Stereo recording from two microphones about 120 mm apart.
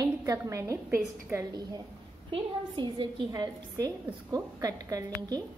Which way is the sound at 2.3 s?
45° right (ahead or behind).